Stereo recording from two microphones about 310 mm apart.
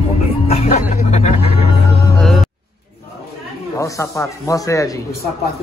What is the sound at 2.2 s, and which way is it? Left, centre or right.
Music, centre.